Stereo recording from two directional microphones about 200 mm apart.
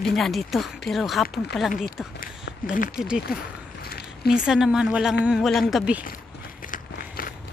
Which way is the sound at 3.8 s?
50° left (ahead or behind).